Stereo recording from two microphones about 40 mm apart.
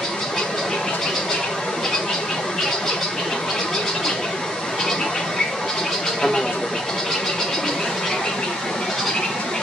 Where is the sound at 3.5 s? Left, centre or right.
Centre.